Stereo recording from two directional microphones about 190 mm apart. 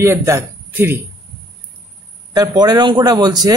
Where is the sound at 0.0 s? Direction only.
15° right (ahead or behind).